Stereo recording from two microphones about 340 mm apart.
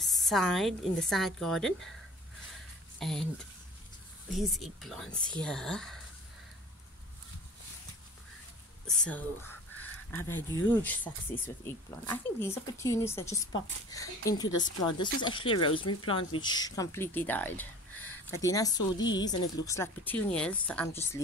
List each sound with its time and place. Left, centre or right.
0.0 s a woman's voice: centre
3.0 s speech: centre
4.4 s a woman's voice: centre
8.8 s speech: centre
15.9 s speech: left
16.3 s speech: centre